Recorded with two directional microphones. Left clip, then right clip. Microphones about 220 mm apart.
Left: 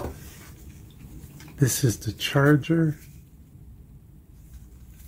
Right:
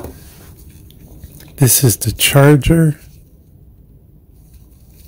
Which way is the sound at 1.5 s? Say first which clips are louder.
Right 10 dB; 45° right (ahead or behind).